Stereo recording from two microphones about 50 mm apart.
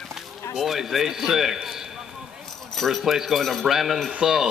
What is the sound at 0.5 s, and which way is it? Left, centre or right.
A man's voice, centre.